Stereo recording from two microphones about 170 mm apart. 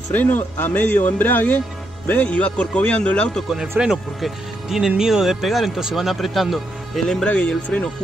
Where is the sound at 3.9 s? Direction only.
Centre (ahead or behind).